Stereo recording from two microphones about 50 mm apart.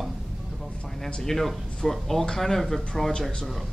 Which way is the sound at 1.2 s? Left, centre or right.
Centre.